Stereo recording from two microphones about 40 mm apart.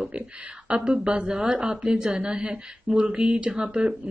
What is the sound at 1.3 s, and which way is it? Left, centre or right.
Speech, right.